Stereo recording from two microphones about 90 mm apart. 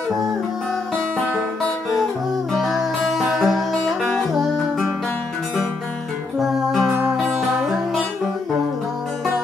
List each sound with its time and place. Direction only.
2.5 s music: centre (ahead or behind)
6.4 s music: centre (ahead or behind)
6.9 s music: 25° right (ahead or behind)
7.2 s music: 5° right (ahead or behind)